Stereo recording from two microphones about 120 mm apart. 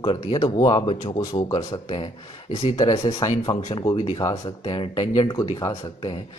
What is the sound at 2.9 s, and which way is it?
Speech, 50° left (ahead or behind).